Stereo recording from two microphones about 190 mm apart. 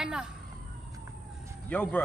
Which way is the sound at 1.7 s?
5° left (ahead or behind).